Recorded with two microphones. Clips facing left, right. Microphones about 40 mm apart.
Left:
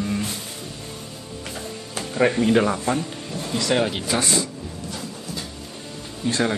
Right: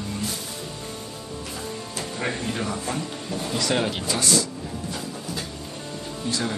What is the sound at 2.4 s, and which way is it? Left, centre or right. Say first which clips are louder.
Speech: left 10 dB; left.